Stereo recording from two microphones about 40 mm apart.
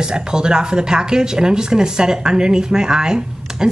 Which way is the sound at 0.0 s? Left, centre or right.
Centre.